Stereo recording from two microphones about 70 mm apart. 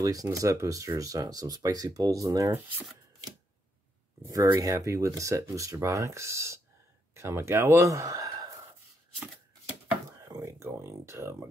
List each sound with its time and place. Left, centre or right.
0.0 s speech: right
4.6 s speech: right
10.2 s speech: right